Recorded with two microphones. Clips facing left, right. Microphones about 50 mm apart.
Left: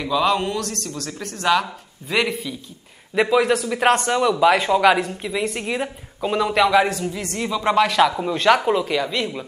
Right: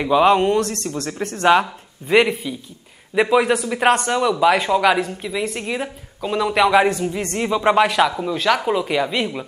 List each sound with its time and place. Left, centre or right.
0.0 s speech: right; by 6.8 s centre
6.8 s speech: centre
8.2 s speech: centre
8.9 s speech: centre